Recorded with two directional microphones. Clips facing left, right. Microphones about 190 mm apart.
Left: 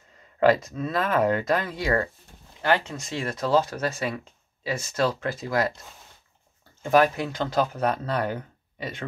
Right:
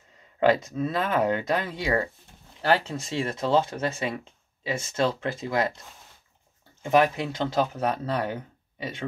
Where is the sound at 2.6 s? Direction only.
35° right (ahead or behind).